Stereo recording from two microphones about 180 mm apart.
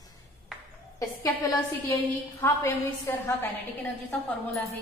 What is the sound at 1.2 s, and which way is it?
A woman's voice, 20° left (ahead or behind).